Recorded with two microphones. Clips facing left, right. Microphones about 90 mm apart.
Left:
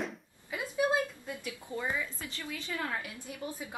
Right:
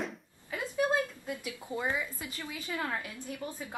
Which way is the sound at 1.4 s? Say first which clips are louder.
Right 1 dB; 15° right (ahead or behind).